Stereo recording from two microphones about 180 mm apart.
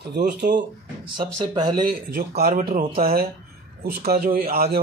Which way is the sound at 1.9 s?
55° right (ahead or behind).